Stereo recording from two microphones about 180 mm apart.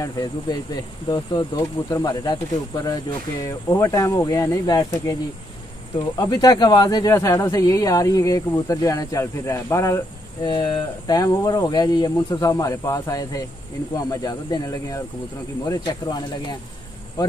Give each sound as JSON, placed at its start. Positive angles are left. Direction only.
{"t": 0.0, "sound": "speech", "side_deg": 20}